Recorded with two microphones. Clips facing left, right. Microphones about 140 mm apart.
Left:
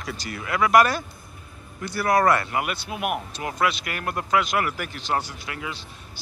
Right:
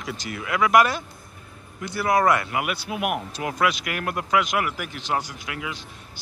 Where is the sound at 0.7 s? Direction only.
20° right (ahead or behind).